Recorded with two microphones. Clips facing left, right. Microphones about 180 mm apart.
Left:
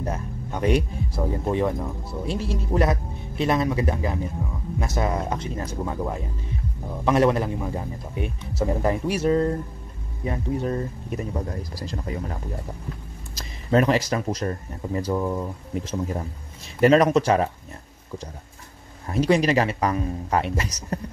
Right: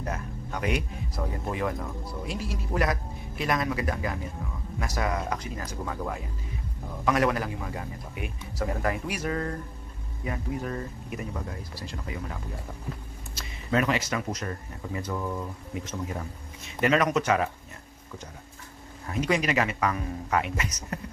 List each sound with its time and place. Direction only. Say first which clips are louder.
0.0 s a sound: left 4 dB; 30° left (ahead or behind)
1.4 s speech: left 6 dB; 25° left (ahead or behind)
19.1 s speech: left 6 dB; 35° left (ahead or behind)